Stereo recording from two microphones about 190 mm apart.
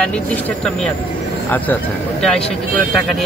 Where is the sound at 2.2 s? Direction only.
5° left (ahead or behind).